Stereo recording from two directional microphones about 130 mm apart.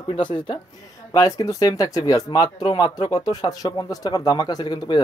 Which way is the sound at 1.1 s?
25° left (ahead or behind).